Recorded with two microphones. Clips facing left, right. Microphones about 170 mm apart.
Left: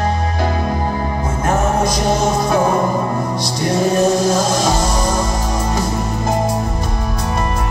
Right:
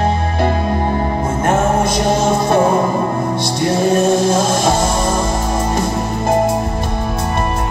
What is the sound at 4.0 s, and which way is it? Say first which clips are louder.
Music: right 1 dB; 25° right (ahead or behind).